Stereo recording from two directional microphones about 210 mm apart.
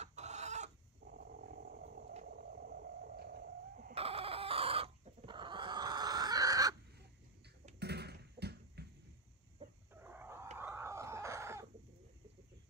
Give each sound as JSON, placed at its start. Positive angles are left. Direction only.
{"t": 0.0, "sound": "chicken", "side_deg": -35}
{"t": 1.0, "sound": "purr", "side_deg": -45}
{"t": 2.2, "sound": "a sound", "side_deg": -45}
{"t": 3.9, "sound": "chicken", "side_deg": -25}
{"t": 7.8, "sound": "basketball bounce", "side_deg": -50}
{"t": 9.9, "sound": "a sound", "side_deg": -10}